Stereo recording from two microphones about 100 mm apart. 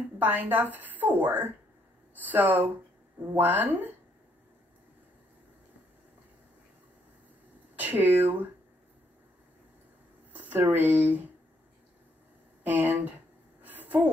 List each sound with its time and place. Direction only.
0.2 s a woman's voice: 20° right (ahead or behind)
7.7 s speech: 15° right (ahead or behind)
10.3 s speech: 20° right (ahead or behind)
12.6 s a sound: 15° right (ahead or behind)